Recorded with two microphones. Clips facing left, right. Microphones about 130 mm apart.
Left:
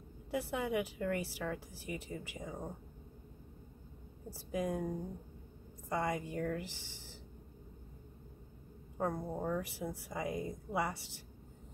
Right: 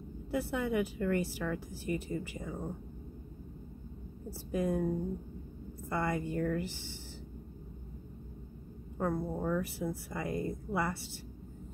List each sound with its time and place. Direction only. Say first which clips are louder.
0.3 s a woman's voice: right 3 dB; 15° left (ahead or behind)
4.3 s a woman's voice: right 4 dB; 15° left (ahead or behind)
5.9 s a woman's voice: right 2 dB; 15° left (ahead or behind)
8.9 s a woman's voice: right 3 dB; 15° left (ahead or behind)